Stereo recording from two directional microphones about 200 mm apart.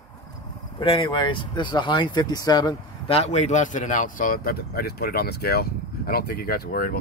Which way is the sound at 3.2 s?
35° left (ahead or behind).